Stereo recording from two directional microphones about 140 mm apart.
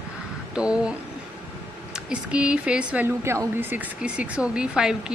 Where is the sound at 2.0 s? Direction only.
10° right (ahead or behind).